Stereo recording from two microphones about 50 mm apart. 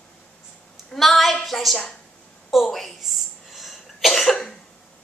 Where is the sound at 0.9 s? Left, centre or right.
Centre.